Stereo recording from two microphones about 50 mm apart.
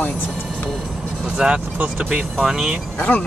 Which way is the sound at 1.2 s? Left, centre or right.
Right.